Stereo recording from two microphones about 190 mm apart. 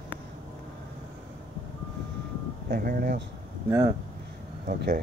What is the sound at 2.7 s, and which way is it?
Speech, 50° right (ahead or behind).